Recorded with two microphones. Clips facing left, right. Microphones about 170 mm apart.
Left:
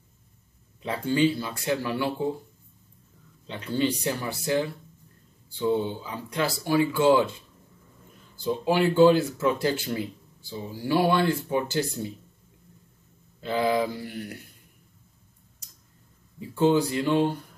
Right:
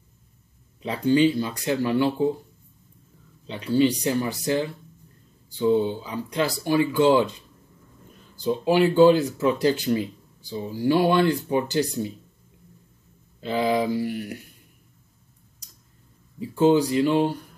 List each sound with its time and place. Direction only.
0.8 s speech: 15° right (ahead or behind)
3.4 s speech: 15° right (ahead or behind)
5.6 s speech: 15° right (ahead or behind)
8.5 s speech: 15° right (ahead or behind)
13.4 s speech: 20° right (ahead or behind)
16.5 s speech: 15° right (ahead or behind)